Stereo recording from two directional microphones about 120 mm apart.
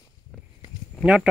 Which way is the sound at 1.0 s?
10° right (ahead or behind).